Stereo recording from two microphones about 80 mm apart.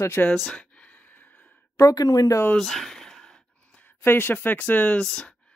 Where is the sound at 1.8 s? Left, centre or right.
Left.